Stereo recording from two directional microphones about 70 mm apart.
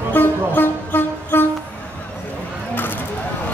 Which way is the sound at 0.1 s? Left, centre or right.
Left.